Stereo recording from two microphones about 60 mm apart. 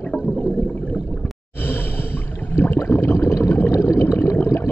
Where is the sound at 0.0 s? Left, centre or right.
Left.